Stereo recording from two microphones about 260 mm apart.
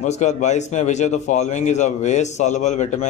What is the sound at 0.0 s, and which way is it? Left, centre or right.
Speech, left.